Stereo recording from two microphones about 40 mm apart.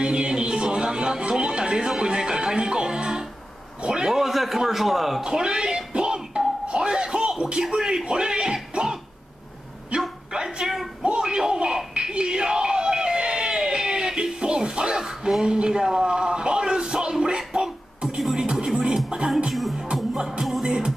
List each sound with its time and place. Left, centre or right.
0.0 s music: centre
1.9 s a man's voice: centre
5.2 s music: centre
6.7 s a sound: right
7.7 s speech: centre
9.9 s dog: right
10.3 s a sound: centre
11.0 s a sound: right
18.3 s music: centre
20.2 s music: centre
20.6 s music: centre